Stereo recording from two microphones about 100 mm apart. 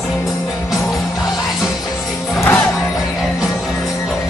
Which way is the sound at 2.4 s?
30° left (ahead or behind).